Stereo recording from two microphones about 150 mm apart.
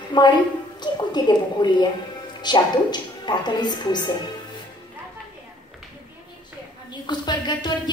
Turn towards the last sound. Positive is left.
turn(degrees=30)  # may be behind; listen again after turning